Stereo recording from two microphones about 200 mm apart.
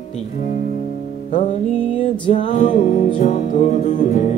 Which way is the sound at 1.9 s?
25° left (ahead or behind).